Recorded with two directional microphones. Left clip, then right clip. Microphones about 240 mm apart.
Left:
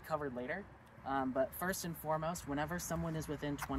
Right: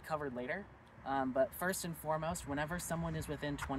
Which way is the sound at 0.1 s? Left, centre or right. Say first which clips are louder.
Even; centre.